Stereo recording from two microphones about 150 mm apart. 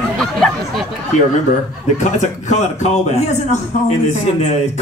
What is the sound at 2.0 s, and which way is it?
Speech, 50° left (ahead or behind).